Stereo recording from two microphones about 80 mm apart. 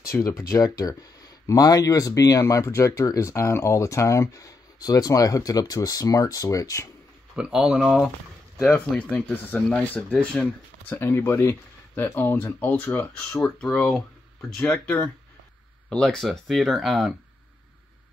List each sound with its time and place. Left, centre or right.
0.1 s speech: left
0.8 s speech: left
7.5 s speech: centre
8.6 s speech: left
9.7 s speech: centre
11.0 s speech: left
15.9 s speech: centre